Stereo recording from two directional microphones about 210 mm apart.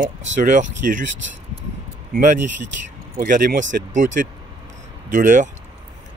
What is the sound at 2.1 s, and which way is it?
Speech, 40° right (ahead or behind).